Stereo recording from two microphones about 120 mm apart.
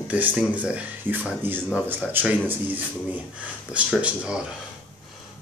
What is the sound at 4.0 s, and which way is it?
Speech, 10° right (ahead or behind).